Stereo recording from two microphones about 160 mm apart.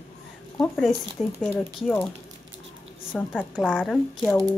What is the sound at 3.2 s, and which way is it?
A woman's voice, 10° left (ahead or behind).